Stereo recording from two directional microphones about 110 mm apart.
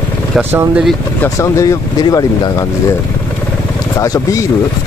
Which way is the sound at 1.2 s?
30° left (ahead or behind).